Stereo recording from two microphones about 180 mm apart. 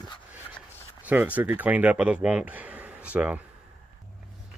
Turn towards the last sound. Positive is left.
turn(degrees=-5)  # may be behind; listen again after turning